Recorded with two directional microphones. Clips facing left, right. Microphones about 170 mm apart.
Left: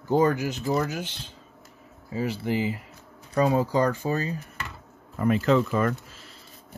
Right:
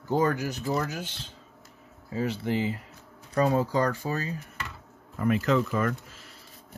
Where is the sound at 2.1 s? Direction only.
10° left (ahead or behind); by 6.4 s 30° left (ahead or behind).